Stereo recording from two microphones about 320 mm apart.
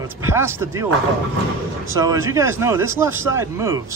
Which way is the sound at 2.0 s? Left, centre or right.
Centre.